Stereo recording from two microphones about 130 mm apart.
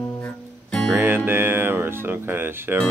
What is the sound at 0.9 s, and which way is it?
Speech, 15° right (ahead or behind).